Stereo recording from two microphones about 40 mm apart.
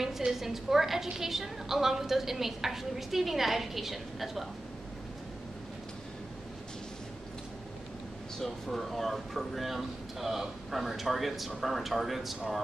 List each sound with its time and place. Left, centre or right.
0.3 s a woman's voice: centre
8.4 s speech: centre